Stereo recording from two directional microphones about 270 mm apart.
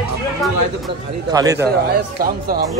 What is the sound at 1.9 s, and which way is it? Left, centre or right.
Speech, right.